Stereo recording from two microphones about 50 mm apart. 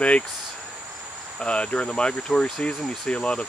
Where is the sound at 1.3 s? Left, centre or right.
Left.